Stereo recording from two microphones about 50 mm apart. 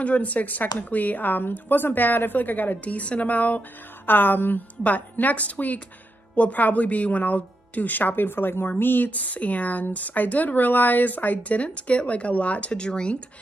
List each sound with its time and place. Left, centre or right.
0.0 s speech: left
4.0 s speech: left
9.1 s speech: left